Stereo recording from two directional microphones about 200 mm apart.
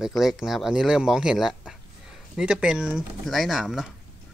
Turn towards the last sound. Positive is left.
turn(degrees=0)  # may be behind; listen again after turning